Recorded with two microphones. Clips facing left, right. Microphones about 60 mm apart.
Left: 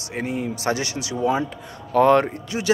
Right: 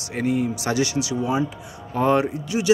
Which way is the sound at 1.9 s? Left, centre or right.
Left.